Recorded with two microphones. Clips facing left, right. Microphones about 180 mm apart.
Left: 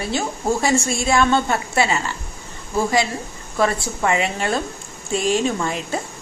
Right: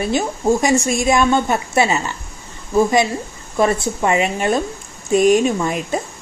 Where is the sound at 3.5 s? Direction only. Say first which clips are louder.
Right 4 dB; 20° right (ahead or behind).